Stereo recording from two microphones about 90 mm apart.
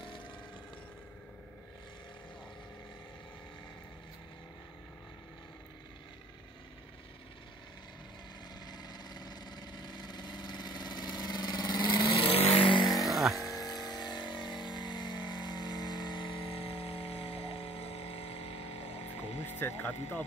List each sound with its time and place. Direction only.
8.6 s vehicle: 50° left (ahead or behind); by 12.8 s 75° left (ahead or behind)
12.9 s vehicle: centre (ahead or behind)
13.5 s vehicle: 45° left (ahead or behind); by 17.6 s 90° left
19.4 s music: 25° left (ahead or behind)